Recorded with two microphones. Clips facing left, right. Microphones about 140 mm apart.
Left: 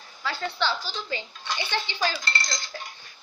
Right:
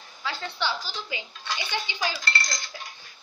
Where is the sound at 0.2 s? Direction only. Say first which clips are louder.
Left 3 dB; 15° right (ahead or behind).